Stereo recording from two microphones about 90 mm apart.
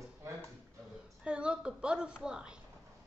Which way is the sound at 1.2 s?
10° right (ahead or behind).